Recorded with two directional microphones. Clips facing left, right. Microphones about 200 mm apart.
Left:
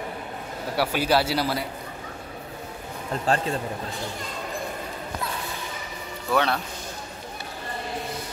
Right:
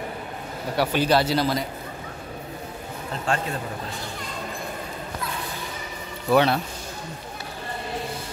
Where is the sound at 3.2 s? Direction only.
35° left (ahead or behind).